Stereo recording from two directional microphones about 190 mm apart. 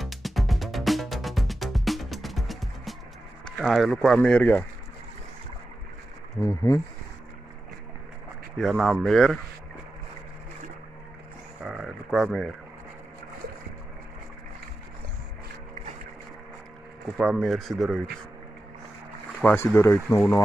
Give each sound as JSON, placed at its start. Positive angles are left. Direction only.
{"t": 0.0, "sound": "music", "side_deg": 0}
{"t": 3.4, "sound": "speech", "side_deg": 0}
{"t": 6.4, "sound": "speech", "side_deg": 15}
{"t": 8.5, "sound": "speech", "side_deg": 0}
{"t": 11.6, "sound": "a sound", "side_deg": 0}
{"t": 12.3, "sound": "speech", "side_deg": 0}
{"t": 17.2, "sound": "speech", "side_deg": 0}
{"t": 19.4, "sound": "speech", "side_deg": 10}